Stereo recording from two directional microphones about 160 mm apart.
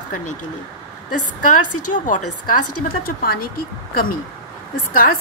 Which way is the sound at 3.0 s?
65° left (ahead or behind).